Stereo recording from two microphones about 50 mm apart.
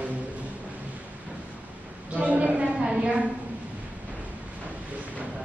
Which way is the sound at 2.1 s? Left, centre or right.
Right.